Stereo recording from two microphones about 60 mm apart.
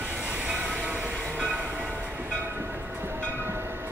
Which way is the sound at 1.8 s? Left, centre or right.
Right.